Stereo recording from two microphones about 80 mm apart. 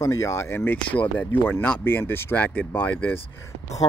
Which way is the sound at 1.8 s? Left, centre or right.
Left.